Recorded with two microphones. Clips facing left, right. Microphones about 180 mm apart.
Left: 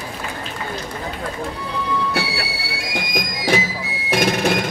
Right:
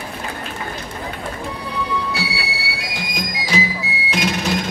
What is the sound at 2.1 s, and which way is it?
Music, 55° left (ahead or behind).